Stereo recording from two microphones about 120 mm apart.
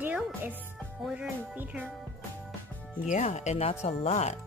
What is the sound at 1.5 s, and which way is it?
Speech, 15° right (ahead or behind).